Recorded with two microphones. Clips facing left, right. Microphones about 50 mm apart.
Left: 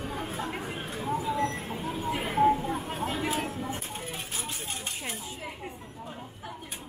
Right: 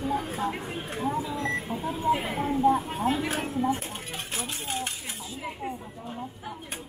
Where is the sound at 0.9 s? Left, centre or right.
Centre.